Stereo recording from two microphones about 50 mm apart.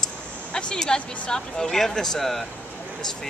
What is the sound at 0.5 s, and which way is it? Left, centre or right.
Speech, centre.